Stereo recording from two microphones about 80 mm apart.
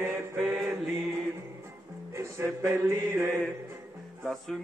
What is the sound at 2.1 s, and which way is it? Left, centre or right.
Mantra, right.